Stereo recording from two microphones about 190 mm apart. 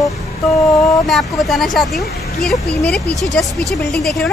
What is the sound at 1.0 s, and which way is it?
Speech, centre (ahead or behind).